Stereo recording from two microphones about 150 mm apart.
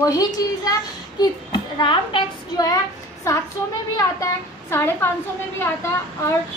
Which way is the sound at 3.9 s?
20° left (ahead or behind).